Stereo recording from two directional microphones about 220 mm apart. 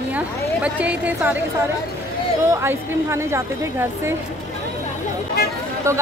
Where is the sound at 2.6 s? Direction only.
10° right (ahead or behind).